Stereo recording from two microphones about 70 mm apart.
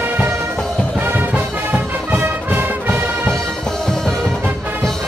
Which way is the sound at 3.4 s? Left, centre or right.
Centre.